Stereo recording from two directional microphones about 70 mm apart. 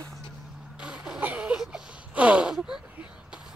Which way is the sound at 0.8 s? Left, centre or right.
Centre.